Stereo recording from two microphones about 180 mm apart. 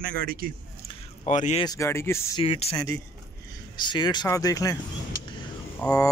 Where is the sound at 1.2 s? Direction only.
40° left (ahead or behind).